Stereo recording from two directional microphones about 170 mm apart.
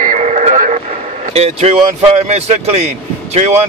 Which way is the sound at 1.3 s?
40° right (ahead or behind).